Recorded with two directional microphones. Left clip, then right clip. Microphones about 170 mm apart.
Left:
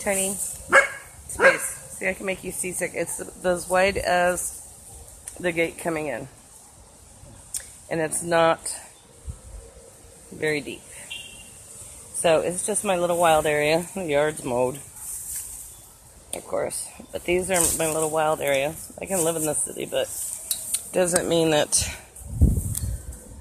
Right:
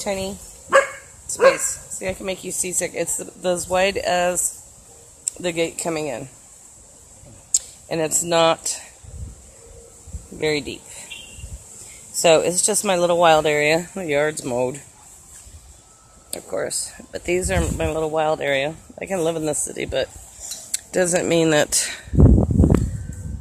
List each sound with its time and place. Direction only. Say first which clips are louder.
0.0 s speech: right 1 dB; 20° right (ahead or behind)
1.4 s speech: right 3 dB; 20° right (ahead or behind)
5.4 s speech: right 1 dB; 25° right (ahead or behind)
7.5 s speech: right 5 dB; 30° right (ahead or behind)
10.4 s speech: right 3 dB; 35° right (ahead or behind)
12.2 s speech: right 5 dB; 45° right (ahead or behind); by 14.8 s 25° right (ahead or behind)
16.3 s speech: right 1 dB; 25° right (ahead or behind); by 22.0 s 40° right (ahead or behind)